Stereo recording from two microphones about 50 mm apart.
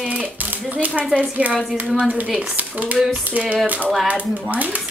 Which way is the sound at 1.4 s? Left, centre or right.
Right.